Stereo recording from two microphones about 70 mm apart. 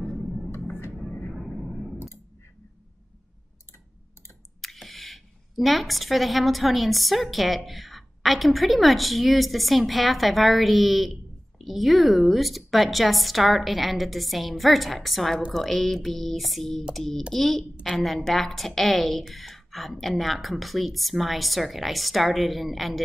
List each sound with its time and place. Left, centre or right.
0.7 s a sound: left
1.3 s vehicle: centre
4.6 s speech: centre